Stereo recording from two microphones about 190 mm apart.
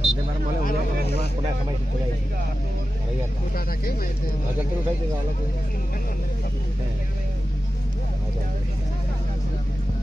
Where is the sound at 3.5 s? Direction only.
50° left (ahead or behind).